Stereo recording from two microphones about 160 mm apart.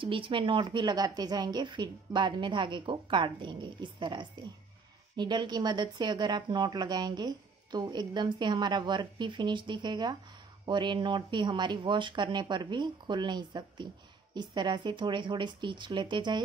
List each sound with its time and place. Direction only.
0.0 s speech: 30° right (ahead or behind)